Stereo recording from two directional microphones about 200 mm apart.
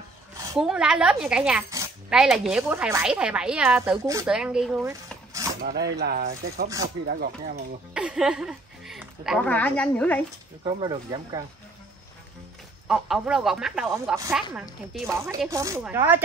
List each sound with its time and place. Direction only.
0.6 s speech: 5° right (ahead or behind)
4.0 s speech: 15° right (ahead or behind)
4.3 s speech: 5° right (ahead or behind)
5.3 s cutlery: 15° right (ahead or behind)
5.6 s speech: 50° right (ahead or behind)
7.9 s a woman's voice: 5° right (ahead or behind)
10.6 s speech: 25° right (ahead or behind)
12.8 s speech: 5° right (ahead or behind)
15.5 s speech: 15° right (ahead or behind)